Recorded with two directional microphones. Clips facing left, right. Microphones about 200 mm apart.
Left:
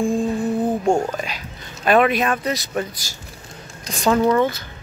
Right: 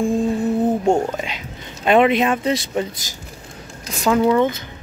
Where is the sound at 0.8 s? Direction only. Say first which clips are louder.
Right 1 dB; 20° right (ahead or behind).